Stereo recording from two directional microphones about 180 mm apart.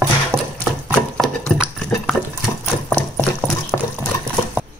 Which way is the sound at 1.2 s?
Centre (ahead or behind).